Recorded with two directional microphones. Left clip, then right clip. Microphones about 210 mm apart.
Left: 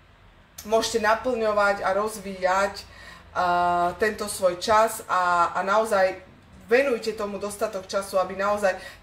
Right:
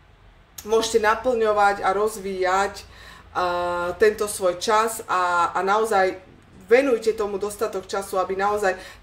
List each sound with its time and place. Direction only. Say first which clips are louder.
0.7 s speech: right 2 dB; 50° right (ahead or behind)